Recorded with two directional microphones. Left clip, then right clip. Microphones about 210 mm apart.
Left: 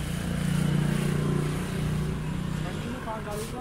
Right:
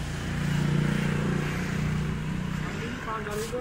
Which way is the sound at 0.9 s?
55° left (ahead or behind).